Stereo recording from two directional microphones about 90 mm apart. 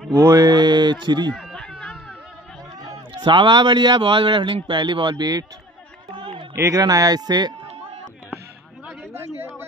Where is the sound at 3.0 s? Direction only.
65° right (ahead or behind); by 5.5 s 45° right (ahead or behind).